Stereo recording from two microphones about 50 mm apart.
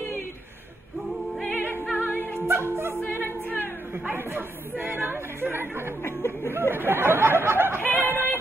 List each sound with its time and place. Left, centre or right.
1.6 s music: left
2.3 s music: right
3.0 s a capella: left
4.1 s speech: right
6.0 s speech: left
6.7 s speech: right
7.9 s yodeling: right